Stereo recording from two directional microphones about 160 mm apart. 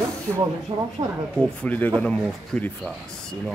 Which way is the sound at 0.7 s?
30° right (ahead or behind).